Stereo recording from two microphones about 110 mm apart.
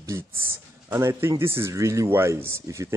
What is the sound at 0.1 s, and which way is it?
A man's voice, 25° right (ahead or behind).